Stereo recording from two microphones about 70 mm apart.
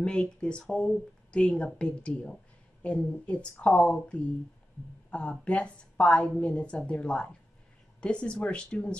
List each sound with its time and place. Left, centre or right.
0.0 s speech: centre